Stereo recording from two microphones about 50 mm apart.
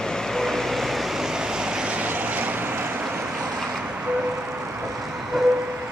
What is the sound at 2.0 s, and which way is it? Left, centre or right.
Vehicle, right.